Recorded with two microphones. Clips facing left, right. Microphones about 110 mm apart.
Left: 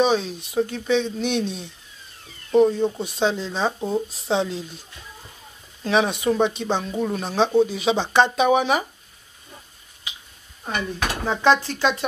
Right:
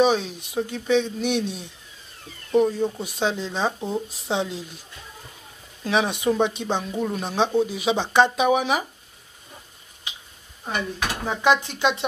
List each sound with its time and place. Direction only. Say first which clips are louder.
0.0 s speech: even; 15° right (ahead or behind)
2.5 s speech: left 3 dB; 20° left (ahead or behind)
3.0 s speech: left 2 dB; 10° right (ahead or behind)
5.9 s speech: left 2 dB; 10° right (ahead or behind)
7.2 s speech: left 4 dB; 15° right (ahead or behind)
10.7 s speech: left 1 dB; 10° right (ahead or behind)